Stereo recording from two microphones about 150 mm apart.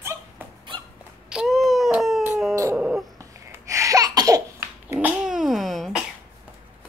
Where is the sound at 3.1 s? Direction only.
20° right (ahead or behind).